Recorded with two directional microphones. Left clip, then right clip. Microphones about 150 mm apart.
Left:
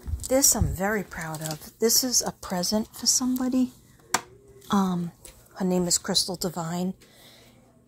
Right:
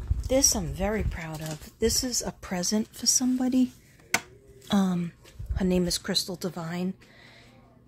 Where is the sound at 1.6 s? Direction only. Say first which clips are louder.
Left 3 dB; 10° right (ahead or behind).